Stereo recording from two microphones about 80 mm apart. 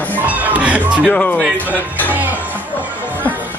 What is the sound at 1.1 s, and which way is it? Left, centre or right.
Speech, centre.